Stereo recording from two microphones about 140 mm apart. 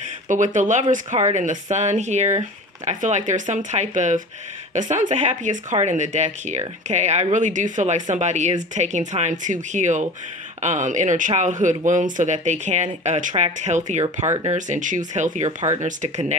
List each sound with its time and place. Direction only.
0.3 s speech: 65° right (ahead or behind)
14.2 s speech: 25° right (ahead or behind)
14.5 s speech: 65° right (ahead or behind)